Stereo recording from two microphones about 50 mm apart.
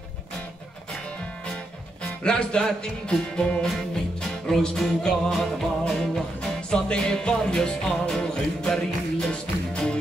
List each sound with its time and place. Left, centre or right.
2.0 s music: centre